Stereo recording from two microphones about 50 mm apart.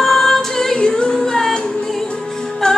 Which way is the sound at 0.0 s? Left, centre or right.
Centre.